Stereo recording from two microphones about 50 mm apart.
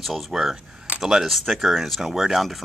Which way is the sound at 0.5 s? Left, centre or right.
Right.